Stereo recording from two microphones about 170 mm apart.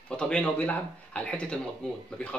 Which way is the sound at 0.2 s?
5° left (ahead or behind).